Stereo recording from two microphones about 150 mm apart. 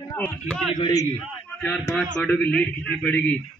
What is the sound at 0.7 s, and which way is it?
Speech, 25° left (ahead or behind).